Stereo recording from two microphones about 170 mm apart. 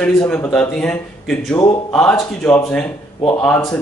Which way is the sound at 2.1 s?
15° left (ahead or behind).